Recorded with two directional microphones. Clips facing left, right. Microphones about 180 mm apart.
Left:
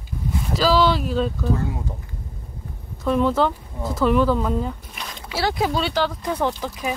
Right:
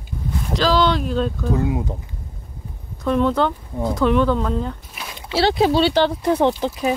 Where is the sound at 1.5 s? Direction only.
15° right (ahead or behind).